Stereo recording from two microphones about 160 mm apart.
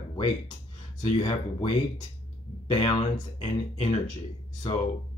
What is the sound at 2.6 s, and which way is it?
Speech, 35° left (ahead or behind).